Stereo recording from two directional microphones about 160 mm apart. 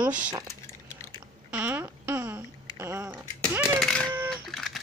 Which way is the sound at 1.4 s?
10° right (ahead or behind).